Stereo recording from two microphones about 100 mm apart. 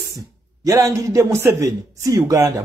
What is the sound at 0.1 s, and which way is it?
A man's voice, 30° right (ahead or behind).